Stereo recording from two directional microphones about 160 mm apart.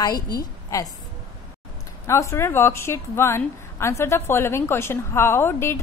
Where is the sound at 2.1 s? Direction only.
15° left (ahead or behind).